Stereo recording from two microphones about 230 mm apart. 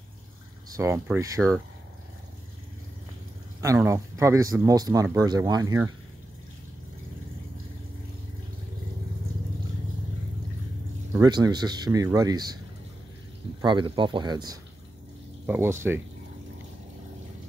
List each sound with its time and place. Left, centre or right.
0.7 s speech: centre
3.6 s speech: centre
11.1 s speech: centre
13.6 s speech: right